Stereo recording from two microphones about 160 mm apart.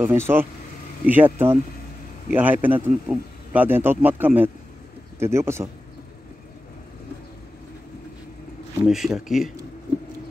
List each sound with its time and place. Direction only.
0.0 s speech: 15° right (ahead or behind)
8.8 s a man's voice: centre (ahead or behind)